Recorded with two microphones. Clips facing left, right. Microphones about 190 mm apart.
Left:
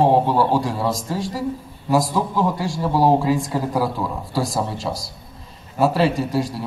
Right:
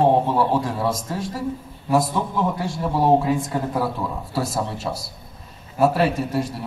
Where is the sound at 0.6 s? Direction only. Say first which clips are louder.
Left 1 dB; centre (ahead or behind).